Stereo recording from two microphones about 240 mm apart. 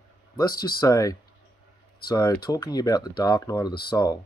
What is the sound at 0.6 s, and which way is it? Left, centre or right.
Speech, centre.